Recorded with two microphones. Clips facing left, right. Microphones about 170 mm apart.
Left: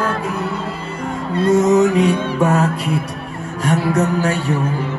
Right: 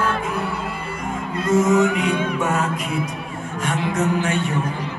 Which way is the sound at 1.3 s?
35° left (ahead or behind).